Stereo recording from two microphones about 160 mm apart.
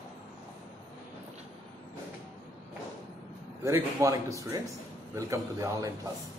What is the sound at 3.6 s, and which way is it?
Speech, 20° right (ahead or behind).